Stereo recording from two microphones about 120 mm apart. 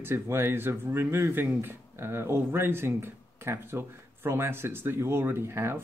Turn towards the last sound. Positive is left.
turn(degrees=-20)  # may be behind; listen again after turning